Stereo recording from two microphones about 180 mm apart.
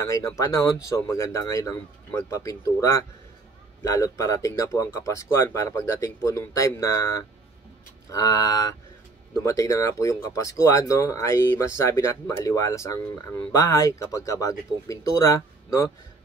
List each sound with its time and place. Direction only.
0.0 s speech: 15° left (ahead or behind)